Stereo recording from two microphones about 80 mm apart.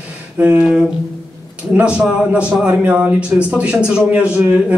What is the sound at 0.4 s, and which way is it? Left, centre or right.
Speech, right.